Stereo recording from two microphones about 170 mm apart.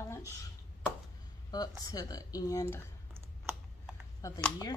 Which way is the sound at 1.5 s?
20° left (ahead or behind).